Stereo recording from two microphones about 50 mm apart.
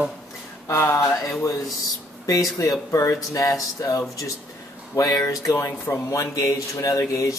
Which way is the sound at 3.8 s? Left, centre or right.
Left.